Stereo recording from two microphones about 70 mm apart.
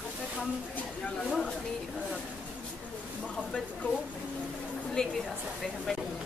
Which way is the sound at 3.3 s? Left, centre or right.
Centre.